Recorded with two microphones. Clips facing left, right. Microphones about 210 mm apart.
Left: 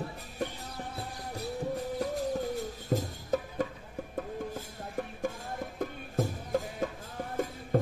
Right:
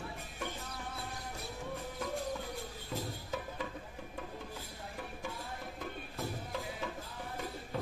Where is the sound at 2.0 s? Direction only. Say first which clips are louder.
Left 5 dB; 40° left (ahead or behind).